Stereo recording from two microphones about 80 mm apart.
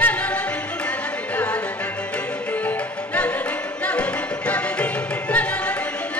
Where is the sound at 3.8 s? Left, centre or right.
Centre.